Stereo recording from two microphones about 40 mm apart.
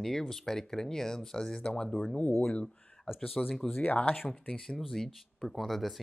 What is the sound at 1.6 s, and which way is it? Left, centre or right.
Speech, left.